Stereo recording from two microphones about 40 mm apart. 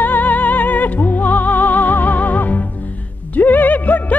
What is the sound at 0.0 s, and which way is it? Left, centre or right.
Music, left.